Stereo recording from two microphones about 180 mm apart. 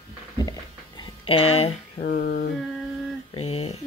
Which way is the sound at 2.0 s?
50° left (ahead or behind).